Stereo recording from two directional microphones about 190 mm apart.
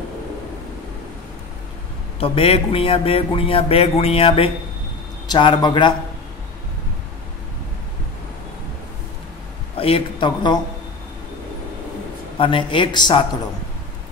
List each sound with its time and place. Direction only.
2.1 s speech: 30° left (ahead or behind)
9.8 s speech: 30° left (ahead or behind)
12.4 s speech: 25° left (ahead or behind)